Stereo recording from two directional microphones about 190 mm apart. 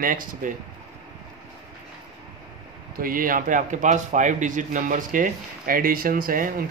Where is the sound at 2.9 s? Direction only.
50° right (ahead or behind).